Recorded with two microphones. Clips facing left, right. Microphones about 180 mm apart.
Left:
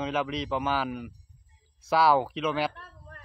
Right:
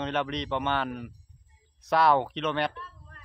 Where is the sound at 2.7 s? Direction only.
55° left (ahead or behind).